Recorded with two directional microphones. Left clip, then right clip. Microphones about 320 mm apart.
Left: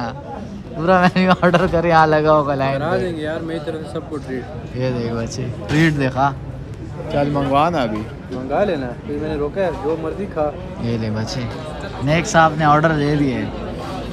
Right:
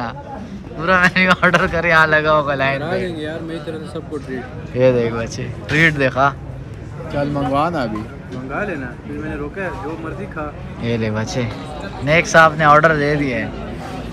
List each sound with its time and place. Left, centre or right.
0.7 s speech: centre
8.5 s speech: left
10.8 s speech: centre